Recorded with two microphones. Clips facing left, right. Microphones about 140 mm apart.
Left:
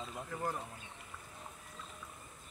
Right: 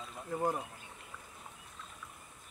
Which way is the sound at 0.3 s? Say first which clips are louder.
Right 7 dB; 20° right (ahead or behind).